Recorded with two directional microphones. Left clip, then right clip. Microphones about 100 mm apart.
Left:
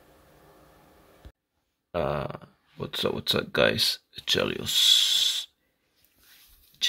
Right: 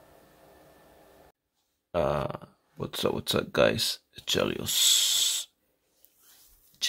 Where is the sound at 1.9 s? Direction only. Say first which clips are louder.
Right 1 dB; 15° right (ahead or behind).